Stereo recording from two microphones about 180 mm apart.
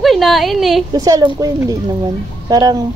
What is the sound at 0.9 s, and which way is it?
Speech, 20° right (ahead or behind).